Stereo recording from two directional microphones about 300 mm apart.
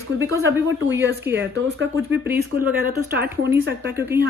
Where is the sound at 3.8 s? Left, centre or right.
Centre.